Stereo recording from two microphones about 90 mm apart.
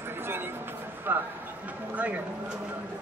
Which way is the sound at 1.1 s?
20° right (ahead or behind).